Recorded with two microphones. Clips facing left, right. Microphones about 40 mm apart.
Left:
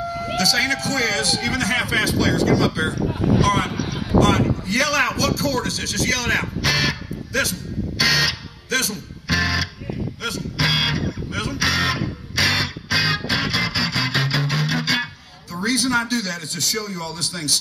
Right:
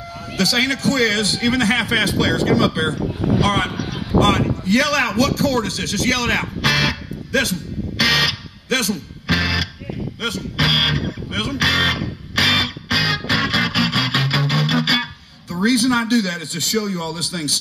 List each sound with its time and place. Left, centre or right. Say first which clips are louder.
0.4 s a man's voice: right 2 dB; right
10.2 s music: right 3 dB; right